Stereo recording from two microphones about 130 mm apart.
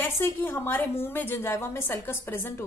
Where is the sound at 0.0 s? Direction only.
15° left (ahead or behind).